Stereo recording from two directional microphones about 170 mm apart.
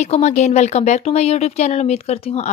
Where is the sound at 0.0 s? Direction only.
40° left (ahead or behind).